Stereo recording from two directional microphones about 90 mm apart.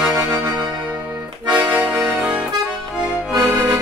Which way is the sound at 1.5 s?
15° right (ahead or behind).